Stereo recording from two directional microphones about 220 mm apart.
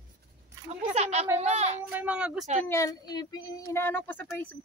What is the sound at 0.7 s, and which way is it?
Speech, 30° right (ahead or behind).